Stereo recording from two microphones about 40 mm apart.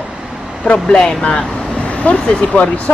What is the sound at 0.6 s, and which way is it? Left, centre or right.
Speech, left.